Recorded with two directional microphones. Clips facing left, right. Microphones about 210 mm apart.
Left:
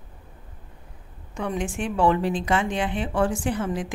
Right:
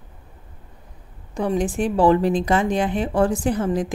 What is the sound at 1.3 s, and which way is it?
Speech, 35° right (ahead or behind).